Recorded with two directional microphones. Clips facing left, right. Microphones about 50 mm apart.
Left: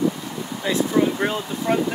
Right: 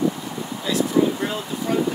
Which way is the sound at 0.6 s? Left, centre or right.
Left.